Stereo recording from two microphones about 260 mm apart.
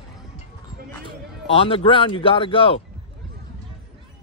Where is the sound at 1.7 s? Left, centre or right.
Left.